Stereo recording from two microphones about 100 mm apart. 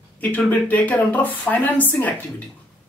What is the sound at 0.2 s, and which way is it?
Speech, 15° left (ahead or behind).